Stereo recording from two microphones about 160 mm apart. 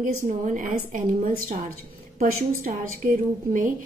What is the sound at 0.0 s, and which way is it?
A woman's voice, 55° right (ahead or behind).